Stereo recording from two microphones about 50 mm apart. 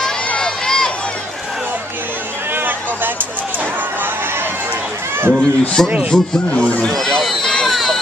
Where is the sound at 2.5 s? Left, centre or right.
Right.